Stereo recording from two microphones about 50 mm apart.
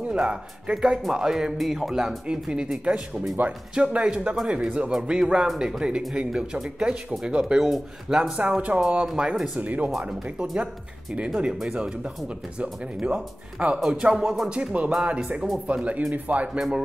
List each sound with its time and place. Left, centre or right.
0.1 s speech: centre
0.7 s speech: centre
2.8 s speech: right
7.5 s speech: centre
8.4 s speech: right
9.6 s speech: right
9.8 s speech: centre
14.1 s speech: centre
14.5 s speech: right
15.6 s speech: right
16.5 s speech: centre